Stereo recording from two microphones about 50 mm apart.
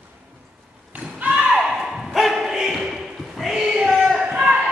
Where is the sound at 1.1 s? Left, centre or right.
Right.